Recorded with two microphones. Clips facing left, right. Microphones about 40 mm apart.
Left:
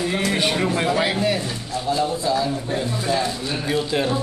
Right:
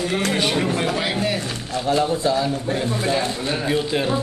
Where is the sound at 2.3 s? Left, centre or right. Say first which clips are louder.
Right 1 dB; centre.